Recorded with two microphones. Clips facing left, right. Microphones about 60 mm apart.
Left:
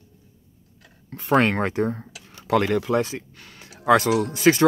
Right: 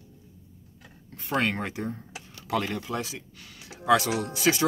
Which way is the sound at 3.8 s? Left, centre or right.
Left.